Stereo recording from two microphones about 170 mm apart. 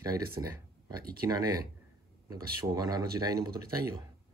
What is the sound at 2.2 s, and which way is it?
Speech, 20° right (ahead or behind).